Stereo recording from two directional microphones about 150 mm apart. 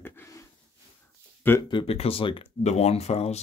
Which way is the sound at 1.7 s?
35° left (ahead or behind).